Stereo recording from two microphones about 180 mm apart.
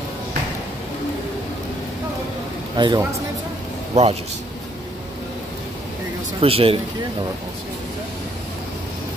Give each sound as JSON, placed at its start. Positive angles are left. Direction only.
{"t": 2.8, "sound": "a man's voice", "side_deg": -25}
{"t": 3.9, "sound": "a man's voice", "side_deg": -35}
{"t": 6.4, "sound": "speech", "side_deg": -30}